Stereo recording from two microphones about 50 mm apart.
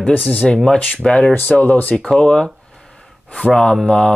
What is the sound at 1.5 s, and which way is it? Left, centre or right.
Speech, left.